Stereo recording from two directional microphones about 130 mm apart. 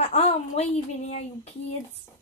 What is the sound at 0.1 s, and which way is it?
Speech, 55° left (ahead or behind).